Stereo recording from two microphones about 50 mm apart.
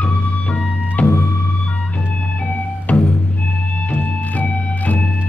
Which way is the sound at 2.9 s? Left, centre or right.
Left.